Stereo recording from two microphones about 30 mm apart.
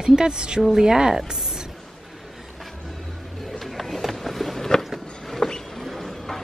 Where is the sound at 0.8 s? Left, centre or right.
Centre.